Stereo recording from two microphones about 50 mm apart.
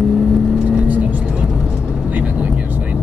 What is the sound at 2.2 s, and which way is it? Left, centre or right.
Vehicle, right.